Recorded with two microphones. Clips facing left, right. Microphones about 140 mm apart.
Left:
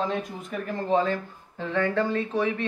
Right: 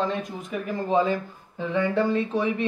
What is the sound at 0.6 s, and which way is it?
Speech, 10° right (ahead or behind).